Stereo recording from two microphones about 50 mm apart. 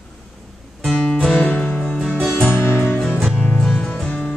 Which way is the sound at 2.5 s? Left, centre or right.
Left.